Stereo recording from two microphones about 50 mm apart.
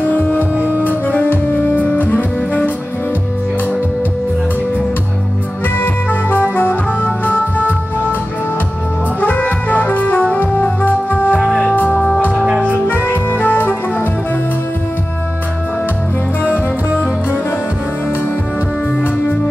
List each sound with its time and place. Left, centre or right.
0.0 s music: left
6.3 s music: left
9.2 s music: left
13.1 s music: left